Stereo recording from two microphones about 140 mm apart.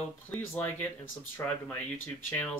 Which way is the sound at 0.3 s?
10° left (ahead or behind).